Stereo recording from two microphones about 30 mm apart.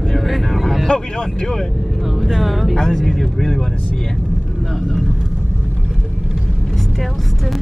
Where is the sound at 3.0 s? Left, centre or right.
Centre.